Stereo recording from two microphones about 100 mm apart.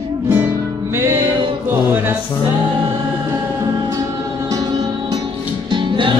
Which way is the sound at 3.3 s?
35° right (ahead or behind).